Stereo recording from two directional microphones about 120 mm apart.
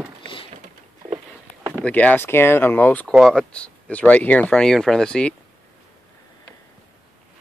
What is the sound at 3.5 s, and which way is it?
Speech, 10° left (ahead or behind).